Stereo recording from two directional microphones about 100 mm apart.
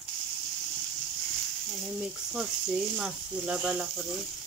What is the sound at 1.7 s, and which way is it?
Speech, 5° right (ahead or behind).